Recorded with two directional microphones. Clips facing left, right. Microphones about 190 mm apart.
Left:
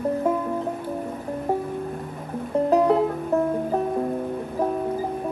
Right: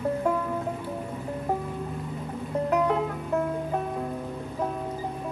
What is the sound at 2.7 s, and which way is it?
Music, 35° left (ahead or behind).